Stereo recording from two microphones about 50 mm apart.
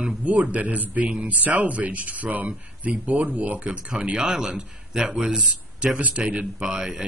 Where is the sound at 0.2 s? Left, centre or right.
Right; by 5.9 s centre.